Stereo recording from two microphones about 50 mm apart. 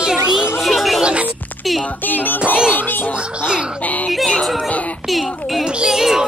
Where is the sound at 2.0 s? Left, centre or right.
Left.